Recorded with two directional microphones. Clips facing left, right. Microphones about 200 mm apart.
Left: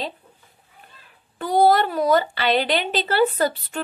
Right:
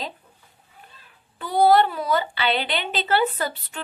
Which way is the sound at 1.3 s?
45° left (ahead or behind).